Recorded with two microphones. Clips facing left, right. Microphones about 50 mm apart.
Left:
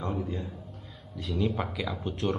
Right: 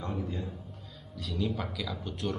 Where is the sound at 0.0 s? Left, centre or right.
Centre.